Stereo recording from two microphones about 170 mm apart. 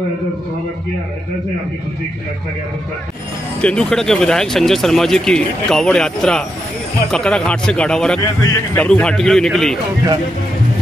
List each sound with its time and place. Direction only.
3.6 s speech: 5° left (ahead or behind)